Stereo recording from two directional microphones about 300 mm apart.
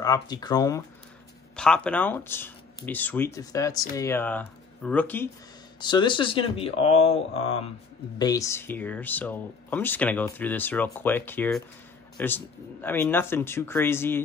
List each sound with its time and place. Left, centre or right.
0.0 s a man's voice: centre